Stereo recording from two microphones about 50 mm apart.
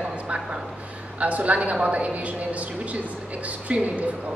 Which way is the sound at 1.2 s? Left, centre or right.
Right.